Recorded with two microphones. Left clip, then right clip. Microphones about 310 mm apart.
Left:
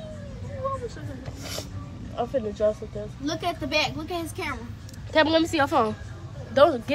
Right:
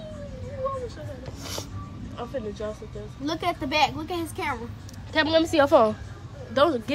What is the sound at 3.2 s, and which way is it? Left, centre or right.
Speech, right.